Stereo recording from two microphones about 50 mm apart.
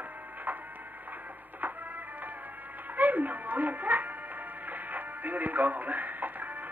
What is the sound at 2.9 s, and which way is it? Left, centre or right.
Speech, right.